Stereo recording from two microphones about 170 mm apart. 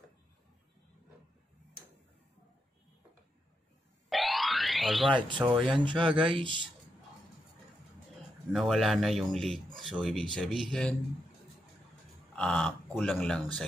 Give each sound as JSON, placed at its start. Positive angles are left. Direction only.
{"t": 4.1, "sound": "music", "side_deg": 0}
{"t": 5.4, "sound": "a man's voice", "side_deg": 0}
{"t": 5.9, "sound": "speech", "side_deg": -30}
{"t": 8.5, "sound": "a man's voice", "side_deg": 0}
{"t": 12.4, "sound": "a man's voice", "side_deg": 5}